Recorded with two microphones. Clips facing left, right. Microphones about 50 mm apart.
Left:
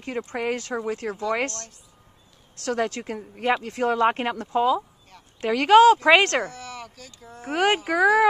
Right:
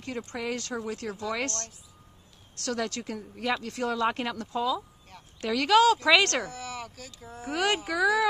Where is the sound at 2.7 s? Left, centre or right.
Left.